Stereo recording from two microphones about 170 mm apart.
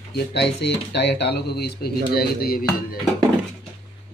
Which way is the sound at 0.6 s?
80° left.